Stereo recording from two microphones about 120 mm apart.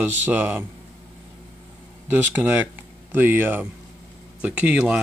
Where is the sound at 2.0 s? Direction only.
15° right (ahead or behind).